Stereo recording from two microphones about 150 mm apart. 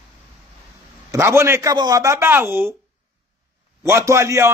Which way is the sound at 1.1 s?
15° right (ahead or behind).